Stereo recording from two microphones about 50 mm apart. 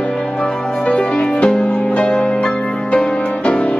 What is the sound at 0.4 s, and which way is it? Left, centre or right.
Music, left.